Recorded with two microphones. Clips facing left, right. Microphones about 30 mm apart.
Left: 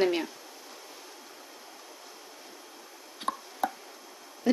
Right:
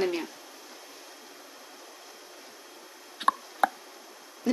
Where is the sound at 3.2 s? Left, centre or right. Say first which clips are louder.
Right 6 dB; right.